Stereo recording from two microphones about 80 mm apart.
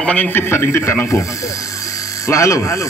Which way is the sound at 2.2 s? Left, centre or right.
Left.